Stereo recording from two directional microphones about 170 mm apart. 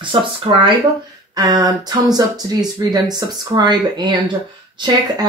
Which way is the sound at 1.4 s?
20° right (ahead or behind).